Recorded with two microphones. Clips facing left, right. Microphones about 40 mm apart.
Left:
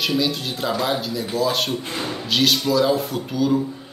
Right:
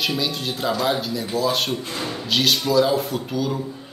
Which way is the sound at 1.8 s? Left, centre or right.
Left.